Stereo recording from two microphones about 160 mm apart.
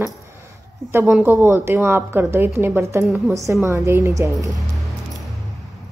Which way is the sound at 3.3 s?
20° right (ahead or behind).